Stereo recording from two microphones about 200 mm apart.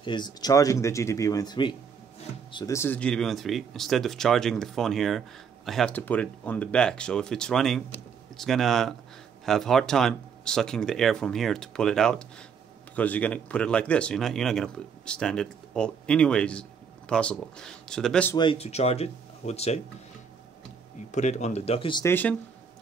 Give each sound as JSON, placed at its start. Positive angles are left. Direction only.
{"t": 0.0, "sound": "speech", "side_deg": 20}
{"t": 18.3, "sound": "speech", "side_deg": 25}
{"t": 21.1, "sound": "speech", "side_deg": 35}
{"t": 22.0, "sound": "speech", "side_deg": 10}